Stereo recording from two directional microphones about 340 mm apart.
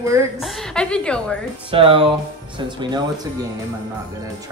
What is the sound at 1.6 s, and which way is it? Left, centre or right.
Speech, centre.